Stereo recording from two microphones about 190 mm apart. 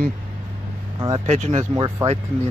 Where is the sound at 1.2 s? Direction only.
35° right (ahead or behind).